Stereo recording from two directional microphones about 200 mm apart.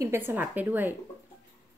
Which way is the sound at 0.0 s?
10° right (ahead or behind).